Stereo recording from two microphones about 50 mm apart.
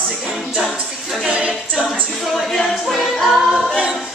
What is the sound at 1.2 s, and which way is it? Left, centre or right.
A capella, right.